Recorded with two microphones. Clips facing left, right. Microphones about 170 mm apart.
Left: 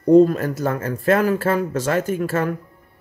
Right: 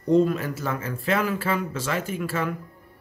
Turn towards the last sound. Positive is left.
turn(degrees=45)  # may be behind; listen again after turning